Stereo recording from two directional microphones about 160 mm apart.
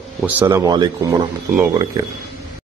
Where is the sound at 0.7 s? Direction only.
25° right (ahead or behind).